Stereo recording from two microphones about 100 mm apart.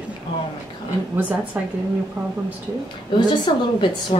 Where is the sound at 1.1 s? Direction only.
20° right (ahead or behind).